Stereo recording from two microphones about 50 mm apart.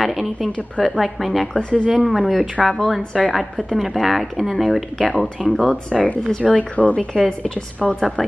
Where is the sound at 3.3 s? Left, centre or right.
Centre.